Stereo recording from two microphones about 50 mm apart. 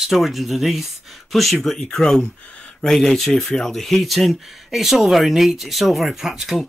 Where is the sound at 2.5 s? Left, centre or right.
Left.